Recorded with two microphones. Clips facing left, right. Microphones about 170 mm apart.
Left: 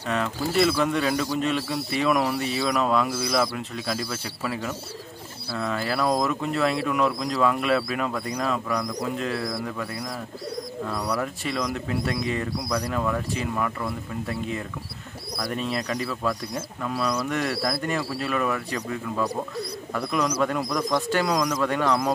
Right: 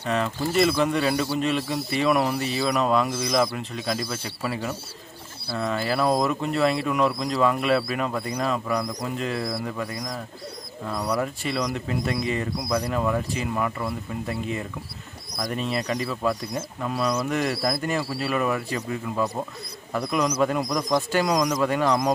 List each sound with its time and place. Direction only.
0.0 s speech: centre (ahead or behind)
10.9 s speech: 10° right (ahead or behind)